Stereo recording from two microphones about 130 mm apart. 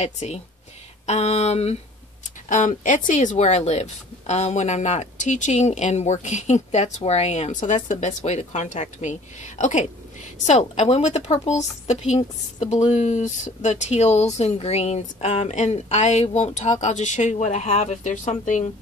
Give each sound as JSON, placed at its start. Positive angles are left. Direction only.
{"t": 0.0, "sound": "a woman's voice", "side_deg": 55}
{"t": 2.5, "sound": "a woman's voice", "side_deg": 75}
{"t": 10.4, "sound": "a woman's voice", "side_deg": 55}